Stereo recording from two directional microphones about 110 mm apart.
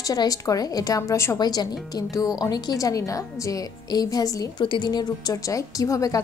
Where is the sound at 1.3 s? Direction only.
35° left (ahead or behind).